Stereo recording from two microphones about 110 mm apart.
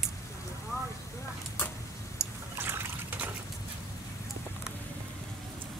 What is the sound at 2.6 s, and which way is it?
Trickle, 20° right (ahead or behind).